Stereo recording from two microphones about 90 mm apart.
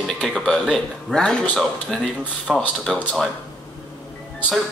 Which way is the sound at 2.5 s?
5° left (ahead or behind).